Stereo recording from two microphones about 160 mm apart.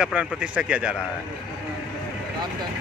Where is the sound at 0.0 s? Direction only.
5° right (ahead or behind).